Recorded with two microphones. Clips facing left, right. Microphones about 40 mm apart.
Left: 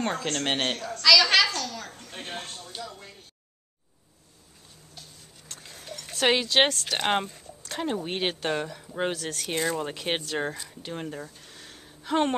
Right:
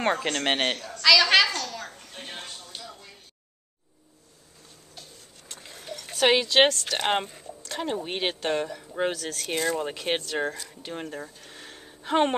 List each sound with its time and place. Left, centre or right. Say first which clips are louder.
0.0 s a woman's voice: right 3 dB; right; by 2.0 s centre
5.5 s a sound: right 2 dB; centre
7.0 s speech: left 1 dB; centre